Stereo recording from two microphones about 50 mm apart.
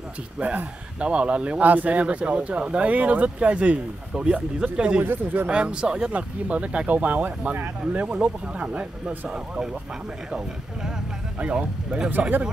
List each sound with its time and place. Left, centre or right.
0.4 s speech: right
1.6 s speech: right
5.0 s speech: right
5.5 s speech: right
11.3 s speech: right